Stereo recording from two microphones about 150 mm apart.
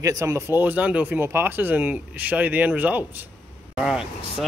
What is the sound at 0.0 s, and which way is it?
Speech, 20° right (ahead or behind).